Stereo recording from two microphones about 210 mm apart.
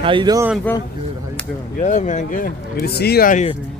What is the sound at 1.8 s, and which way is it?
Speech, 35° left (ahead or behind).